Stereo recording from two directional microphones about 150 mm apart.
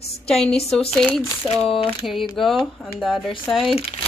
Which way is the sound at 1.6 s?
35° left (ahead or behind).